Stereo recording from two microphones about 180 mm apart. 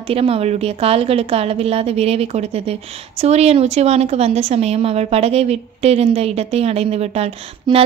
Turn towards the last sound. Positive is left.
turn(degrees=-35)  # may be behind; listen again after turning